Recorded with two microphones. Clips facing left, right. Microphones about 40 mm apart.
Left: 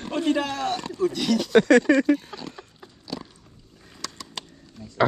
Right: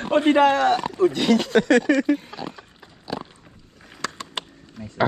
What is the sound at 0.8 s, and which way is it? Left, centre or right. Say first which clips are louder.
Speech: right 5 dB; right.